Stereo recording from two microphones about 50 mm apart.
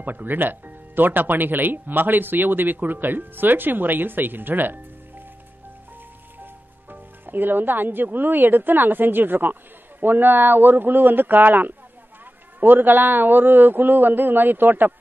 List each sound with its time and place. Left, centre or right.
0.0 s speech: right
6.4 s speech: right